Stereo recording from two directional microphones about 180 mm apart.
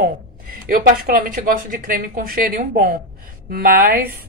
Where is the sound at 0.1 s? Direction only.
50° right (ahead or behind).